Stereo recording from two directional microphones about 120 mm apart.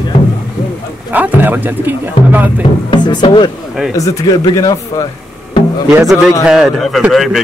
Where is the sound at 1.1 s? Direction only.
15° right (ahead or behind).